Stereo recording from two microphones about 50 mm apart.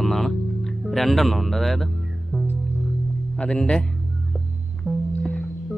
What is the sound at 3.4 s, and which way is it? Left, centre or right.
Speech, centre.